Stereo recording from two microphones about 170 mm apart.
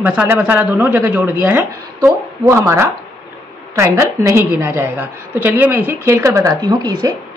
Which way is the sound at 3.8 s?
15° right (ahead or behind).